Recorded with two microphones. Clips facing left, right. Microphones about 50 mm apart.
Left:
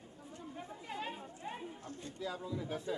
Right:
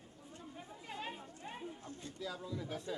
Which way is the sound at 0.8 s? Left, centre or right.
Centre.